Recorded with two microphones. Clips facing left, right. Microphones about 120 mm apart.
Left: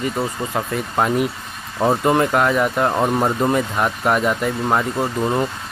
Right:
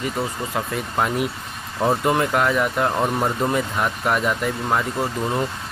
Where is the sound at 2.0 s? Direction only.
5° left (ahead or behind).